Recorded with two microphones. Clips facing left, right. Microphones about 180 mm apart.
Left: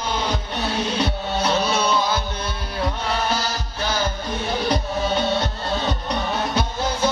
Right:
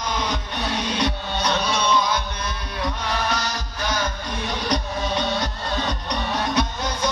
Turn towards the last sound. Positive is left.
turn(degrees=30)  # may be behind; listen again after turning